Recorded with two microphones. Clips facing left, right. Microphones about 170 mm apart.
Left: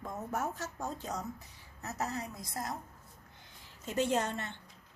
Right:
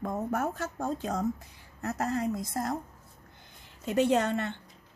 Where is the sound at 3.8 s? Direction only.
65° right (ahead or behind).